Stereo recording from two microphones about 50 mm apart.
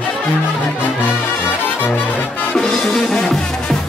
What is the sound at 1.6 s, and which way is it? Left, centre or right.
Music, left.